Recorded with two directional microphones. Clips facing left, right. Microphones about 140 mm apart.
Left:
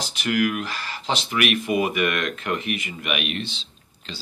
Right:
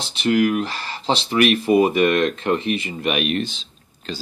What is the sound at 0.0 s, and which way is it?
Speech, 30° right (ahead or behind).